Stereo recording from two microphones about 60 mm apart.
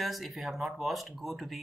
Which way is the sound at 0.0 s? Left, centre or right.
Centre.